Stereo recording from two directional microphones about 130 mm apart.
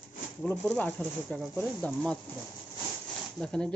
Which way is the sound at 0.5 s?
15° left (ahead or behind).